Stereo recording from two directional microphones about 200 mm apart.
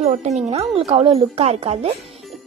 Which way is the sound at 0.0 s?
30° right (ahead or behind).